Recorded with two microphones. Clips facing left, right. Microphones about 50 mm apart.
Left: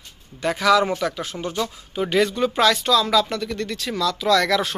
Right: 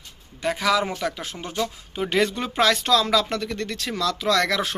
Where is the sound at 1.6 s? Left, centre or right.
Centre.